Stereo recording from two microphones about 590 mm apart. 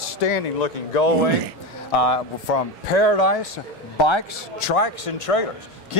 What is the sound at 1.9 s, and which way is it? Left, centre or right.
Speech, left.